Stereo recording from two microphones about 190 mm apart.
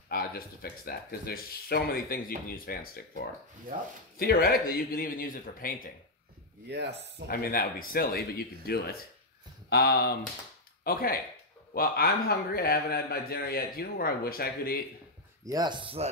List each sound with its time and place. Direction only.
0.1 s a man's voice: 50° left (ahead or behind)
4.2 s a man's voice: 50° left (ahead or behind)
6.7 s speech: 60° right (ahead or behind)
7.2 s a man's voice: 50° left (ahead or behind)
15.4 s speech: 20° right (ahead or behind)